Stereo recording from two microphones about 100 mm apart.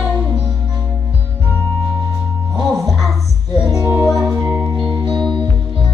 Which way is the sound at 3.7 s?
25° right (ahead or behind).